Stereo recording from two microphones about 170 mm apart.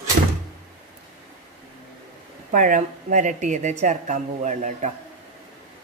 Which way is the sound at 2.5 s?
50° right (ahead or behind).